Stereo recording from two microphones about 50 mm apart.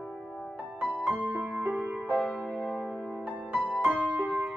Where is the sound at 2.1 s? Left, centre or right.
Centre.